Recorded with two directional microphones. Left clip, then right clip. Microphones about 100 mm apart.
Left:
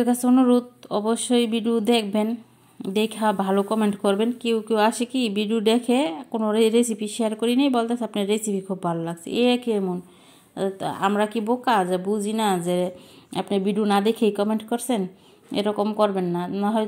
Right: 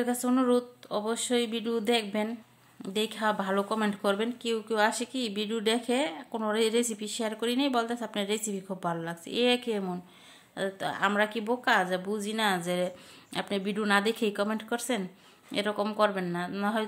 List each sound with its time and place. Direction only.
0.0 s a woman's voice: 30° left (ahead or behind); by 14.3 s 15° left (ahead or behind)
15.5 s a woman's voice: 15° left (ahead or behind)
16.0 s speech: 50° right (ahead or behind)